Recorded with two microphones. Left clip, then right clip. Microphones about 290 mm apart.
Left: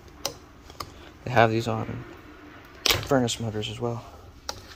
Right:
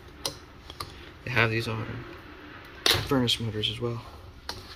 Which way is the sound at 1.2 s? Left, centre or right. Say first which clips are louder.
Left 5 dB; left.